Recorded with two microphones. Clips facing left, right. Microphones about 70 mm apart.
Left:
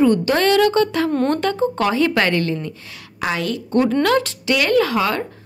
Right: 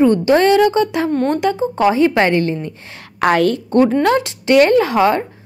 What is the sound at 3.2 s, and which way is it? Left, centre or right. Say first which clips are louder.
Speech: right 8 dB; right.